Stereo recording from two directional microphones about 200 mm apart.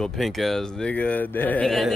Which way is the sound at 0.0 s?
Centre (ahead or behind).